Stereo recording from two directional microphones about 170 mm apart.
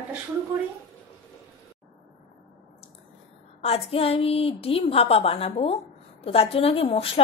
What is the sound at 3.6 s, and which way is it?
A woman's voice, 35° left (ahead or behind).